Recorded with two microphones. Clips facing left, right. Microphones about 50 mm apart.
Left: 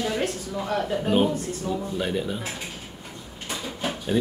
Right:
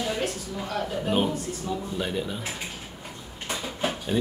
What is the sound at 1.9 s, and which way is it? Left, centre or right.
Speech, centre.